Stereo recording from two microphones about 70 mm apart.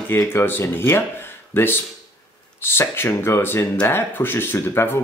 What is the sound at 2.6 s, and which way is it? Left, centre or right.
Speech, left.